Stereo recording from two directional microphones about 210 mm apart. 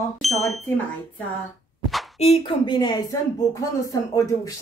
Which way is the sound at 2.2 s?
25° left (ahead or behind).